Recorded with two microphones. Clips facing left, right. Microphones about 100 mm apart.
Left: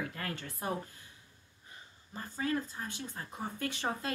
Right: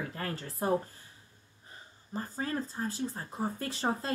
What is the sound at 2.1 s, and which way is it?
Speech, 35° right (ahead or behind).